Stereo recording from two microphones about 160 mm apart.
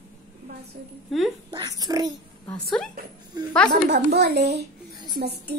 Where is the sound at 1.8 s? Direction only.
25° right (ahead or behind).